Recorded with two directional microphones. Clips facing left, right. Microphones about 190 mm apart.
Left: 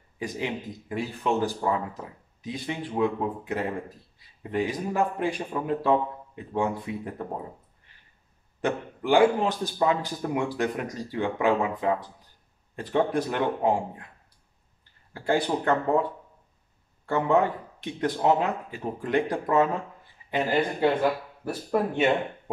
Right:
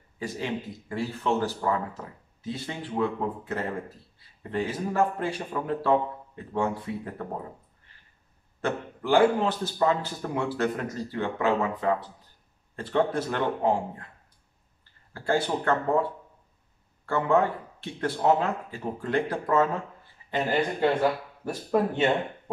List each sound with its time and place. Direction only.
0.2 s a man's voice: 15° left (ahead or behind)
8.5 s a man's voice: 15° left (ahead or behind)
15.1 s a man's voice: 15° left (ahead or behind)
17.0 s a man's voice: 15° left (ahead or behind)